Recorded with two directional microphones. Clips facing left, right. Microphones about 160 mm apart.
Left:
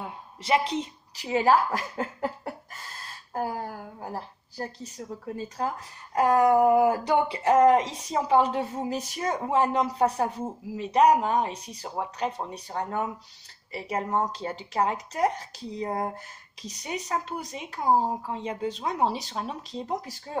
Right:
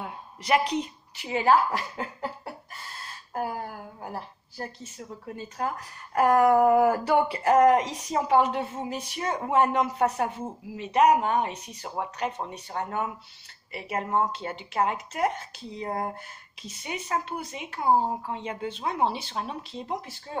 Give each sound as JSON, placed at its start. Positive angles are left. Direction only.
{"t": 0.0, "sound": "a woman's voice", "side_deg": 30}
{"t": 6.1, "sound": "speech", "side_deg": 15}